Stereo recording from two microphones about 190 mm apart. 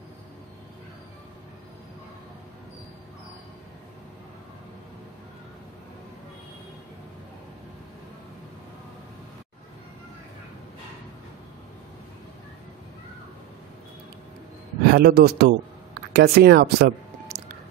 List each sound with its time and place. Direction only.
14.9 s a man's voice: 55° right (ahead or behind)